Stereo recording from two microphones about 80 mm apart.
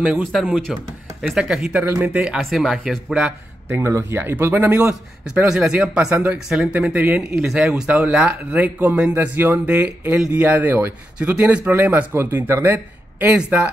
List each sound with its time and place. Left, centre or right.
0.3 s speech: centre
3.6 s speech: right
5.3 s speech: centre
6.7 s speech: centre
7.3 s speech: centre; by 12.7 s right
12.7 s speech: centre